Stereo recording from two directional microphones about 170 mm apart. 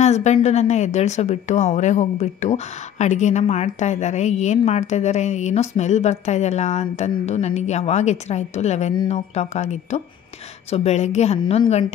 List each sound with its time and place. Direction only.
0.0 s a woman's voice: 40° left (ahead or behind)